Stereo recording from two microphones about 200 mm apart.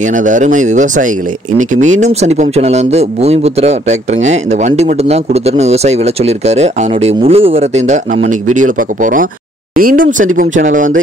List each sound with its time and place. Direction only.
0.0 s speech: 40° right (ahead or behind)